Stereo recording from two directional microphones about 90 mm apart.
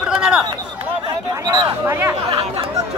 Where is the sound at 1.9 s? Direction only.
30° right (ahead or behind).